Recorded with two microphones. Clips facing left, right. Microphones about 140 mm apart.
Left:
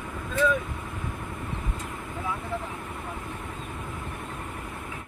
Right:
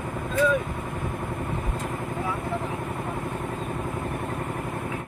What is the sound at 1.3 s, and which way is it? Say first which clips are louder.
Vehicle: right 5 dB; 45° right (ahead or behind).